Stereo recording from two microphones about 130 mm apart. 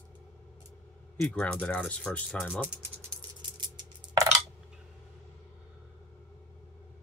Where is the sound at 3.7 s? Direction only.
25° right (ahead or behind).